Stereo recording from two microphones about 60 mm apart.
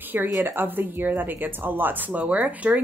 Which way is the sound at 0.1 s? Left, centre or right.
Right.